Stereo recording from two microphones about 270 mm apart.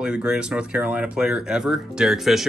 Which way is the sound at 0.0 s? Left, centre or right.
Centre.